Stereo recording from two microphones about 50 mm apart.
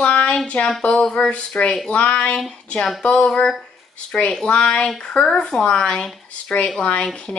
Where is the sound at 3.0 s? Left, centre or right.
Left.